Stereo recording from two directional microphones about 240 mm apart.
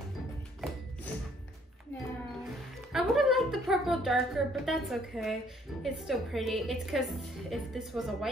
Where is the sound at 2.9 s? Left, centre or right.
Centre.